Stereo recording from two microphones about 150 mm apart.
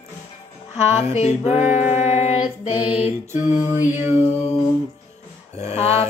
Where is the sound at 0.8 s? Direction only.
45° left (ahead or behind).